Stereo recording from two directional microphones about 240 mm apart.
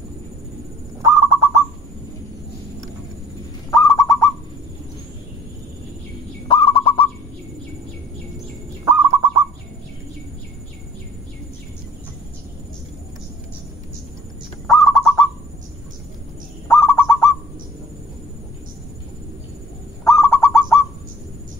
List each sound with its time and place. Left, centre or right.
1.0 s bird: centre
3.7 s owl: centre
6.4 s fowl: left
8.8 s bird: centre
14.7 s bird: centre
16.6 s bird: centre
20.1 s owl: centre